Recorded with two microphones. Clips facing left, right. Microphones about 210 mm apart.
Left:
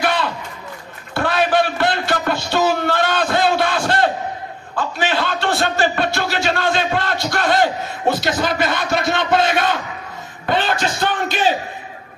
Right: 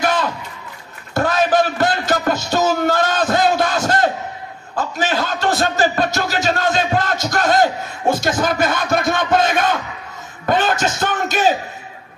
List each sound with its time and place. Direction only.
0.0 s a sound: 45° right (ahead or behind)
4.7 s music: 40° right (ahead or behind)
10.5 s speech: 45° right (ahead or behind)